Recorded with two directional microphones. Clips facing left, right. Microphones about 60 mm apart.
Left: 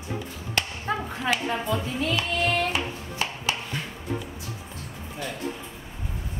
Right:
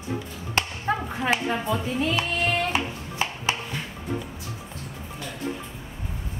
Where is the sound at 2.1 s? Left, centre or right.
Right.